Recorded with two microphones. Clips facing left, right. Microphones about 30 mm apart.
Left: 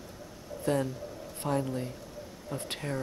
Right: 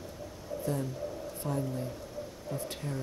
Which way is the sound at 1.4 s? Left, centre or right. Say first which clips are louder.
Left 4 dB; left.